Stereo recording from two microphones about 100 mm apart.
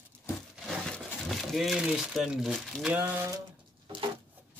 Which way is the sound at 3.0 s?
20° right (ahead or behind).